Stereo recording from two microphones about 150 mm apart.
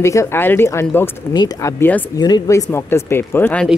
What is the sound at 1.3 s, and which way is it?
Speech, 25° left (ahead or behind).